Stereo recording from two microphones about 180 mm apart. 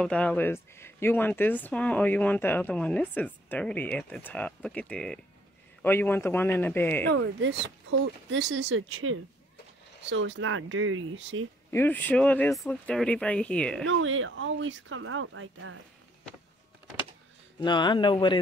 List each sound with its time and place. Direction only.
0.0 s speech: 5° left (ahead or behind)
8.3 s speech: 85° right
11.7 s speech: 10° left (ahead or behind)
13.8 s speech: 90° right
17.6 s speech: 25° left (ahead or behind)